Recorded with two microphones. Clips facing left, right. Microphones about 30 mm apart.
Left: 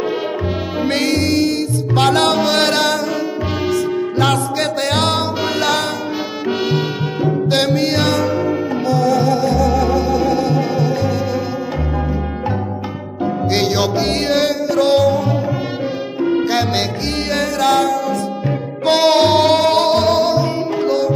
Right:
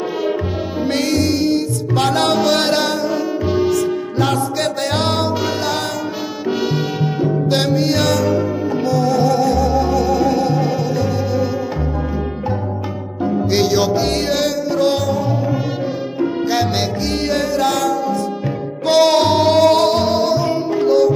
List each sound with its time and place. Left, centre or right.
0.7 s music: left
2.3 s music: left
4.2 s music: left
8.8 s music: left
9.3 s music: left
10.4 s music: left
13.5 s music: left
17.3 s music: left
18.9 s music: left
19.2 s music: left
19.8 s music: left
20.1 s music: left
20.3 s music: left